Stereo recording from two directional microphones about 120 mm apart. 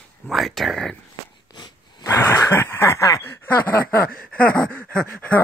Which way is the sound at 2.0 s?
25° left (ahead or behind).